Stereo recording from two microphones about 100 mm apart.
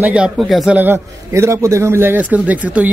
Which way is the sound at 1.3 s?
30° right (ahead or behind).